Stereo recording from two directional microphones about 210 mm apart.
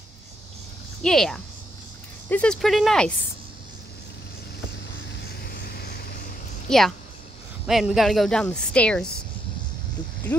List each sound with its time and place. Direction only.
1.0 s speech: centre (ahead or behind)
5.2 s vehicle: 45° left (ahead or behind)
6.7 s speech: 5° left (ahead or behind)